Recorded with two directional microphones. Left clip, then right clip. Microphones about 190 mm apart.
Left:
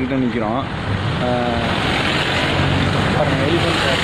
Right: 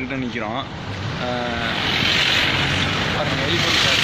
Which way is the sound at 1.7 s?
55° left (ahead or behind).